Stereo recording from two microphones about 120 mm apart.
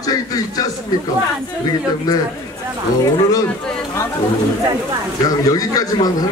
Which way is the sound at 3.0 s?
30° left (ahead or behind).